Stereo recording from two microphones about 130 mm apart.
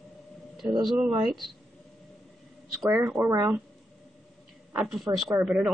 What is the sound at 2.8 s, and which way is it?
Speech, 20° right (ahead or behind).